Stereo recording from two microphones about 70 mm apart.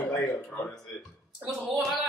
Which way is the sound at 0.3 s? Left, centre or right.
Left.